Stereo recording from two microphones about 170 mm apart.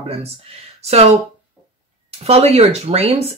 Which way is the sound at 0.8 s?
40° right (ahead or behind).